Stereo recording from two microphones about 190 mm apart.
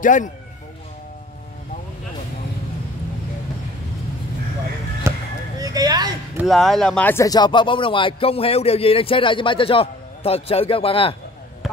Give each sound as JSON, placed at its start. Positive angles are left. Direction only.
{"t": 0.0, "sound": "speech", "side_deg": 45}
{"t": 5.1, "sound": "a sound", "side_deg": -15}
{"t": 5.6, "sound": "speech", "side_deg": -20}
{"t": 6.3, "sound": "speech", "side_deg": 0}